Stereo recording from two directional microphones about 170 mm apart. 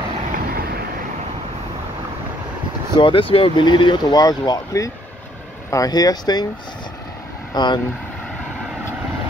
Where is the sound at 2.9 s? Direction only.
30° left (ahead or behind).